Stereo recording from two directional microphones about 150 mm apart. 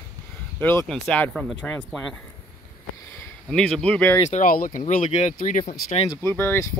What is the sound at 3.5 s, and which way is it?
Speech, 5° left (ahead or behind).